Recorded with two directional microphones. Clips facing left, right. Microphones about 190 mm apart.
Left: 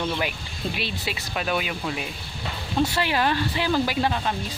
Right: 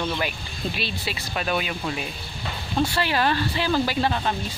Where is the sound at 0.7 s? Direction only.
15° left (ahead or behind).